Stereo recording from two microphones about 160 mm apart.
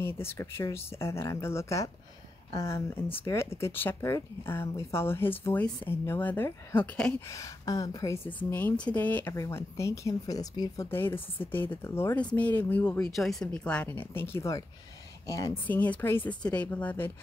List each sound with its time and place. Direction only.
0.0 s speech: 15° left (ahead or behind)
7.2 s speech: 20° left (ahead or behind)
10.9 s speech: 15° left (ahead or behind)